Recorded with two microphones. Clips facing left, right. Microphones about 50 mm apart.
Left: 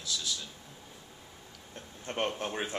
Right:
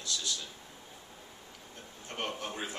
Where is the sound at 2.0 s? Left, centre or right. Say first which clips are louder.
Left 5 dB; left.